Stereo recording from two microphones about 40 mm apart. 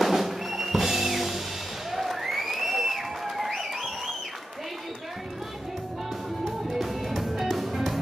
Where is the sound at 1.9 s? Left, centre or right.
Centre.